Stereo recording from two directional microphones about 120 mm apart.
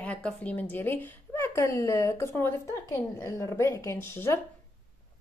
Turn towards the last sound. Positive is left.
turn(degrees=20)  # may be behind; listen again after turning